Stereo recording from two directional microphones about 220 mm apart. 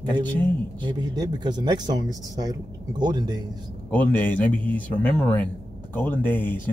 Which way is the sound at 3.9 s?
10° left (ahead or behind).